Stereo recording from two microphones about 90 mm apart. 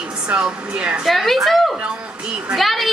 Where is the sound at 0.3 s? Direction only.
10° right (ahead or behind).